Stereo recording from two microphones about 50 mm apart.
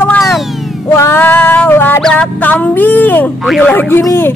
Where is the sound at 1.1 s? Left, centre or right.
Left.